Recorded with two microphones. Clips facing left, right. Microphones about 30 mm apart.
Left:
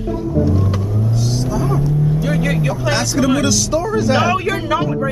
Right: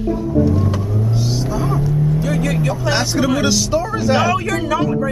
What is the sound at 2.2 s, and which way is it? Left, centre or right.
Speech, centre.